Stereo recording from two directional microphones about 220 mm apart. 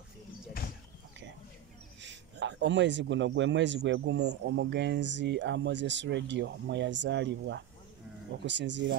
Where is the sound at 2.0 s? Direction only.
55° right (ahead or behind).